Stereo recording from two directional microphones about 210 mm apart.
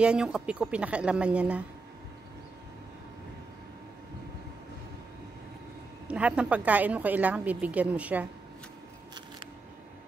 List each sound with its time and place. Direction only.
0.0 s speech: 5° right (ahead or behind)
6.0 s a woman's voice: 5° right (ahead or behind)